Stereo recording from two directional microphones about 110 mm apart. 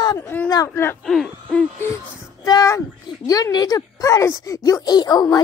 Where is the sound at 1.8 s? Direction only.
30° left (ahead or behind).